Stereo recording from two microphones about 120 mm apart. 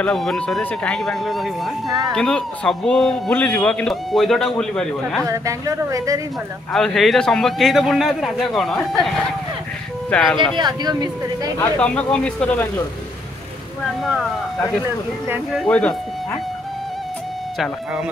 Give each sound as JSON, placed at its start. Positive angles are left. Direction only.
{"t": 0.0, "sound": "a man's voice", "side_deg": 0}
{"t": 5.2, "sound": "a woman's voice", "side_deg": -25}
{"t": 6.7, "sound": "a man's voice", "side_deg": 5}
{"t": 10.3, "sound": "speech", "side_deg": -40}
{"t": 11.8, "sound": "speech", "side_deg": 10}
{"t": 15.5, "sound": "a man's voice", "side_deg": 5}